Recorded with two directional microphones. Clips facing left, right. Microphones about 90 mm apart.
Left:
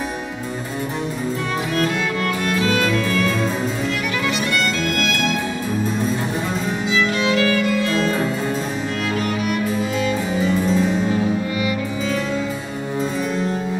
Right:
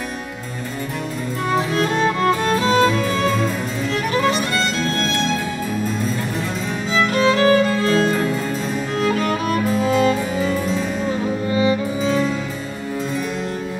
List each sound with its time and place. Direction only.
1.8 s music: 35° right (ahead or behind)
7.2 s music: 40° right (ahead or behind)
11.5 s music: 30° right (ahead or behind)